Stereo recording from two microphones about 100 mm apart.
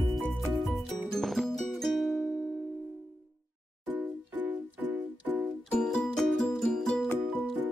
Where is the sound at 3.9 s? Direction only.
20° right (ahead or behind).